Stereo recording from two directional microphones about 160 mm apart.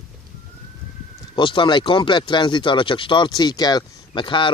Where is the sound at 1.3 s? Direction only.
30° left (ahead or behind).